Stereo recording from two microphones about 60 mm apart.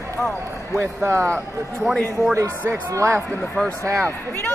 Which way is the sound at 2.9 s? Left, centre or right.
Right.